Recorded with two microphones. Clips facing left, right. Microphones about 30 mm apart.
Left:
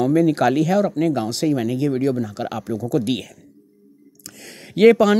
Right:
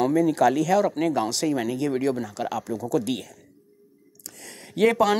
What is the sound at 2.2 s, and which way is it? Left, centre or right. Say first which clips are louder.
Speech: left 2 dB; left.